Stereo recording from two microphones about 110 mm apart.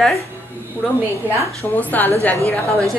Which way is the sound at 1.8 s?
15° left (ahead or behind).